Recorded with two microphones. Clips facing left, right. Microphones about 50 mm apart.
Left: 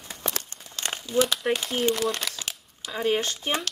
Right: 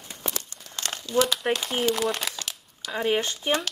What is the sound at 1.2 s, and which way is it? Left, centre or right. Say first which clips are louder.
Speech: even; centre.